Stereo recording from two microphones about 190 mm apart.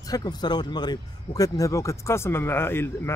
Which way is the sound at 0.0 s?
20° left (ahead or behind).